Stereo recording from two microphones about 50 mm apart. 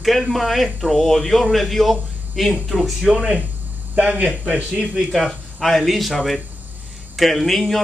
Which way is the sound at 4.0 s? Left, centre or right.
Right.